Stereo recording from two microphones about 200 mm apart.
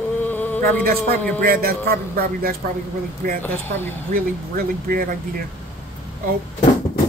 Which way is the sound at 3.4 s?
10° left (ahead or behind).